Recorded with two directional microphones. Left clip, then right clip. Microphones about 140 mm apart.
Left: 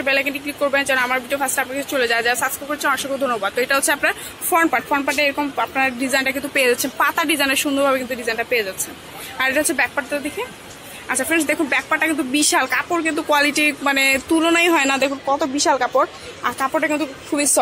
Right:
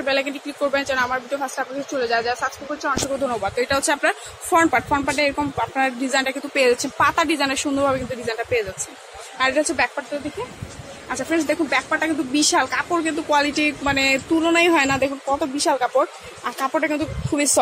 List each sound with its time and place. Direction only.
0.0 s speech: centre (ahead or behind)
2.1 s speech: 30° left (ahead or behind)
3.3 s speech: centre (ahead or behind)
11.1 s a woman's voice: 10° left (ahead or behind)